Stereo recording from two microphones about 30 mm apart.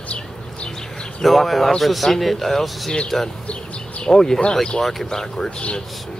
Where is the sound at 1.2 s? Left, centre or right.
Centre.